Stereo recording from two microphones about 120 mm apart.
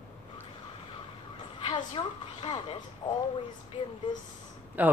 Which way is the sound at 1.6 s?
45° left (ahead or behind).